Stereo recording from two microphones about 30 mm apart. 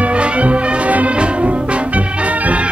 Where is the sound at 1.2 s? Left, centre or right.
Right.